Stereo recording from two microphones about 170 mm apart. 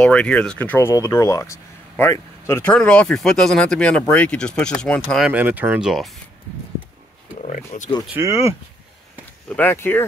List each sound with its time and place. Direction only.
0.0 s speech: 5° left (ahead or behind)
5.3 s speech: 10° right (ahead or behind)
7.4 s speech: 45° left (ahead or behind)
8.1 s speech: 15° right (ahead or behind)
9.6 s speech: 10° left (ahead or behind)